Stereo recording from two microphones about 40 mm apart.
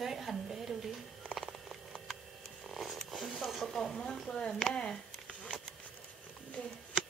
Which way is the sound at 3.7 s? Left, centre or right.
Centre.